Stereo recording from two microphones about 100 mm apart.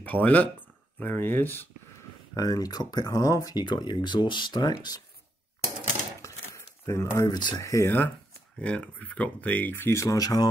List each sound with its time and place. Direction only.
0.0 s speech: 15° left (ahead or behind)
2.3 s speech: 35° left (ahead or behind)
6.2 s a sound: 30° left (ahead or behind)
7.2 s speech: 45° left (ahead or behind)
7.6 s speech: 30° left (ahead or behind)
8.5 s speech: 10° left (ahead or behind); by 10.5 s 40° left (ahead or behind)